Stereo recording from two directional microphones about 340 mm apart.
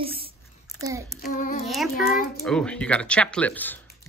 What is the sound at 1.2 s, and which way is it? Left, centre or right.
Child singing, left.